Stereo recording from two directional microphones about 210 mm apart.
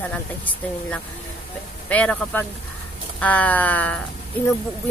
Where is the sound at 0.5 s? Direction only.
5° left (ahead or behind).